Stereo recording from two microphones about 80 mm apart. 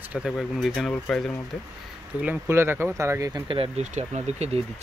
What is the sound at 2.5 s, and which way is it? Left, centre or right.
Speech, right.